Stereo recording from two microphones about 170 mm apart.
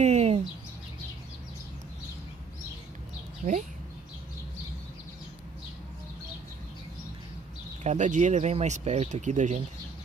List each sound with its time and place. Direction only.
0.0 s bird: 40° right (ahead or behind)
3.4 s speech: 45° right (ahead or behind)
7.8 s speech: 45° right (ahead or behind)